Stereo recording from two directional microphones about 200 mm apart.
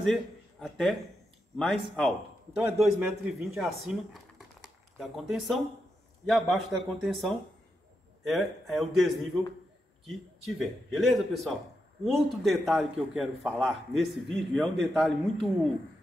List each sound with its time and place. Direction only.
0.0 s a man's voice: centre (ahead or behind)
2.0 s a man's voice: centre (ahead or behind)